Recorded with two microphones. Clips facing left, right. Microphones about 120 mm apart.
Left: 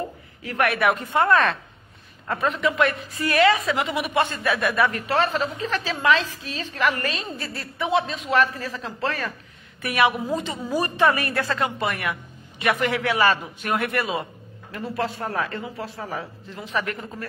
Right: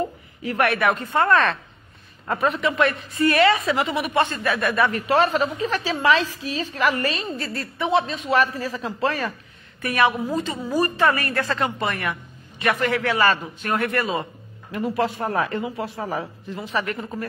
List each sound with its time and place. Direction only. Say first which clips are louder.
0.7 s a woman's voice: even; 15° left (ahead or behind)
5.0 s speech: right 3 dB; 15° right (ahead or behind)
5.7 s a woman's voice: even; 5° right (ahead or behind)
9.8 s speech: right 1 dB; 10° left (ahead or behind)
11.4 s speech: right 1 dB; 5° left (ahead or behind)
14.7 s speech: right 4 dB; 15° right (ahead or behind)
16.5 s a woman's voice: right 2 dB; centre (ahead or behind)